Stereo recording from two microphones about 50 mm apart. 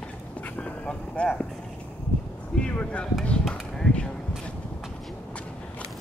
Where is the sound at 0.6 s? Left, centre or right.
Left.